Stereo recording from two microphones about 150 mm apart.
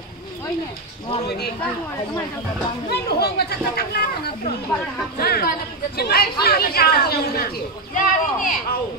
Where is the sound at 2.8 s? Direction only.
90° left.